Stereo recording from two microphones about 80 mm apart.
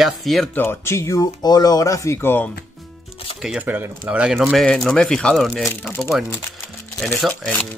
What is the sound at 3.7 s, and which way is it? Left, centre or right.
Speech, right.